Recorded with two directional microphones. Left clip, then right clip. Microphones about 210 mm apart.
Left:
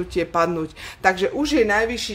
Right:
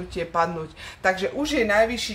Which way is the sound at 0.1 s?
55° left (ahead or behind).